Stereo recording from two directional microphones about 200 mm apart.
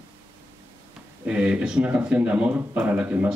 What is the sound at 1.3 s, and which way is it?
Speech, 5° right (ahead or behind).